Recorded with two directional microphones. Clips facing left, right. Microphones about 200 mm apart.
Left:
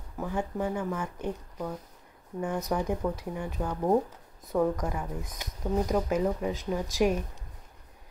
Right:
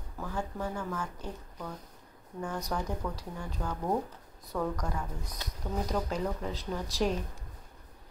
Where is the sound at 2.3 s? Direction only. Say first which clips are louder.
Left 5 dB; 20° left (ahead or behind).